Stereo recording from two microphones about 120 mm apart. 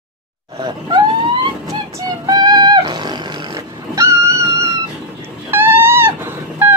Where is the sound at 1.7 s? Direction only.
30° right (ahead or behind).